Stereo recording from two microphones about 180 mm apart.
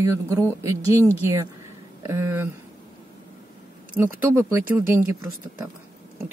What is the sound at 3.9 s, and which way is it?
Speech, 10° right (ahead or behind).